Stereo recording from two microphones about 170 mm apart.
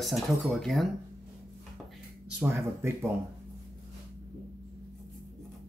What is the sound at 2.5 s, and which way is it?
Speech, 15° right (ahead or behind).